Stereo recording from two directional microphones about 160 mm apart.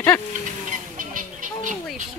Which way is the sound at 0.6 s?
55° right (ahead or behind).